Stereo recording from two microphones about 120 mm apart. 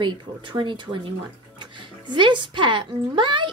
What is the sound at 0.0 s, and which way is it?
Speech, 40° right (ahead or behind).